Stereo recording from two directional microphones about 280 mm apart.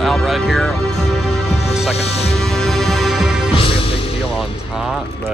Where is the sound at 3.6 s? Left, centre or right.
Centre.